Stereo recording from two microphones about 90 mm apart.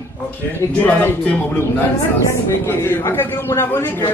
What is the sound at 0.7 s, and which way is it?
Speech, 20° left (ahead or behind).